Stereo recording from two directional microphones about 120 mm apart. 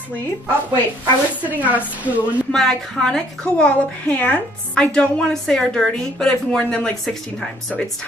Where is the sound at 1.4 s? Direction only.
15° right (ahead or behind).